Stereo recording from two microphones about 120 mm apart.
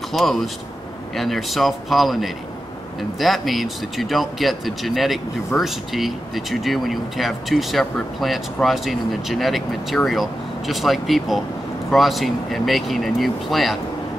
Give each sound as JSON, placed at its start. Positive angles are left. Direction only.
{"t": 0.1, "sound": "speech", "side_deg": 0}